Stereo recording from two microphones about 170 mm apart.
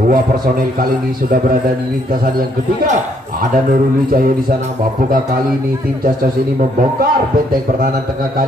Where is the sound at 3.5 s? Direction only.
55° right (ahead or behind).